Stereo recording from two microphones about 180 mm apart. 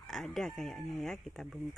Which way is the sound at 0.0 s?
Centre (ahead or behind).